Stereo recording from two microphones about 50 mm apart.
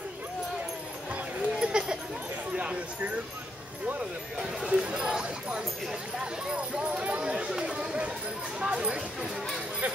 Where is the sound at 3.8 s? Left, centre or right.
Right.